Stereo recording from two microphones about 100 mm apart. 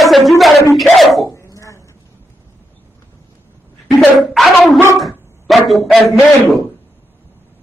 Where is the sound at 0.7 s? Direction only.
Centre (ahead or behind).